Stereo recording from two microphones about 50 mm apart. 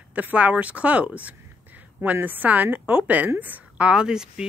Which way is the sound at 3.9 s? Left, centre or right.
Centre.